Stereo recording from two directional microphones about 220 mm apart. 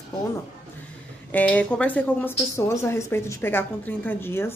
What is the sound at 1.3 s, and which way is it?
A woman's voice, 5° left (ahead or behind).